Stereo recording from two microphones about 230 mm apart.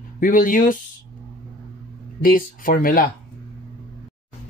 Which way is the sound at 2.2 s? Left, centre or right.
Left.